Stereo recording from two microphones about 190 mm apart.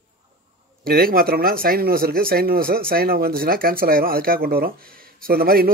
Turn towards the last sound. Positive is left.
turn(degrees=-50)  # may be behind; listen again after turning